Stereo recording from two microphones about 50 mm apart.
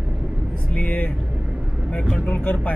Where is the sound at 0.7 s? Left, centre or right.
Left.